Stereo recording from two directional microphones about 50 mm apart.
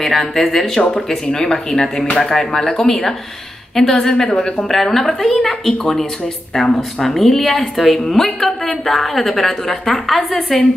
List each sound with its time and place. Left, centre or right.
0.0 s a woman's voice: centre